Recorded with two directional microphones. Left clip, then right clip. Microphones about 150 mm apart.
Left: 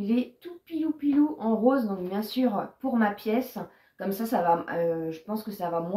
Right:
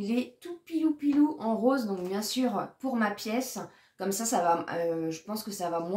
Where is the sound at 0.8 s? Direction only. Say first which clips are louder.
Right 1 dB; 10° right (ahead or behind).